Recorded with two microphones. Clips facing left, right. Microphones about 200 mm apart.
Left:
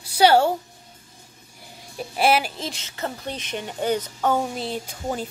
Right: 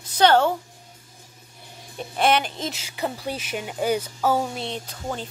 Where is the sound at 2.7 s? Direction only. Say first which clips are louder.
Right 2 dB; 10° right (ahead or behind).